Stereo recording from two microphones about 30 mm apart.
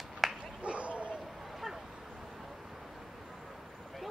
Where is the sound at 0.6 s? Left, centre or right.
Right.